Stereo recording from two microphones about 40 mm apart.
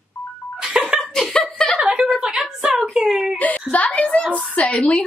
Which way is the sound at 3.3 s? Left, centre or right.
Left.